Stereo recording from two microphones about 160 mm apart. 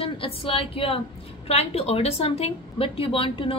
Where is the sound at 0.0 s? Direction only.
35° left (ahead or behind).